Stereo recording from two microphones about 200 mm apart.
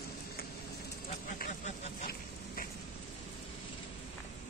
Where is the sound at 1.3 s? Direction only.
40° left (ahead or behind).